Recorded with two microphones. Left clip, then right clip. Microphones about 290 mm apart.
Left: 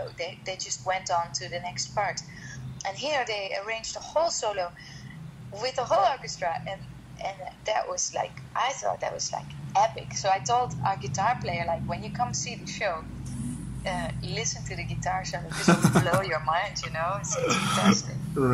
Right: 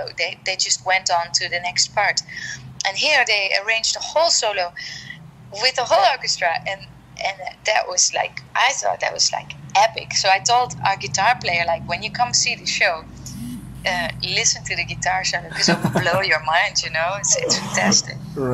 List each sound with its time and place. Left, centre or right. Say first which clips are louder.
0.0 s a woman's voice: right 10 dB; right